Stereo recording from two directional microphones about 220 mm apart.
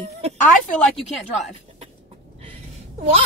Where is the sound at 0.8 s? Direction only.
Centre (ahead or behind).